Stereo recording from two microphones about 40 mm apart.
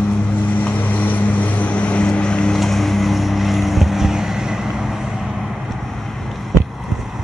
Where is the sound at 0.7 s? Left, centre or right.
Left.